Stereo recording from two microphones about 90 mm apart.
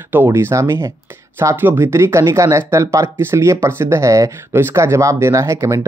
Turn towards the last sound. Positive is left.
turn(degrees=-35)  # may be behind; listen again after turning